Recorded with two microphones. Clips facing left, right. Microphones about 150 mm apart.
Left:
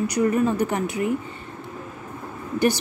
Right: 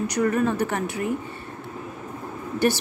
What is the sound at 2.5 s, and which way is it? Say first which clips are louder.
Speech: left 1 dB; 15° left (ahead or behind).